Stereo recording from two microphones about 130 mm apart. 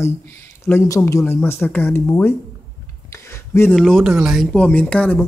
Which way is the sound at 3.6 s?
Centre (ahead or behind).